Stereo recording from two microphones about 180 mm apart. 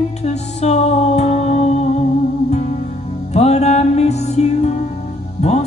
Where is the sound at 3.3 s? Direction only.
35° left (ahead or behind).